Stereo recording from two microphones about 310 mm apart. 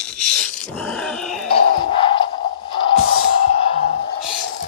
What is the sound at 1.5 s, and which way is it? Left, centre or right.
Music, centre.